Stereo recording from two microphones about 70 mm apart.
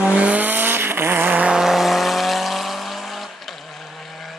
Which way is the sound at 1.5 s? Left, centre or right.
Centre.